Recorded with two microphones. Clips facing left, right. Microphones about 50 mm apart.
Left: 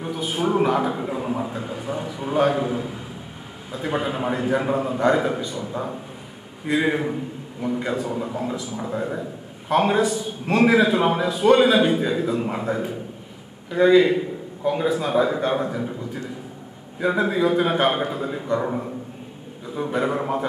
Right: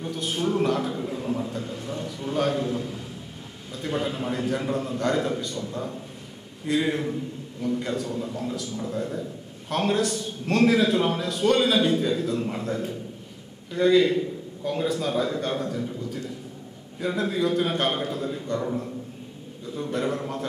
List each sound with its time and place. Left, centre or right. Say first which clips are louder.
0.0 s a sound: left 3 dB; centre
3.7 s a man's voice: left 3 dB; centre
17.0 s a man's voice: left 5 dB; centre
19.7 s a man's voice: left 4 dB; centre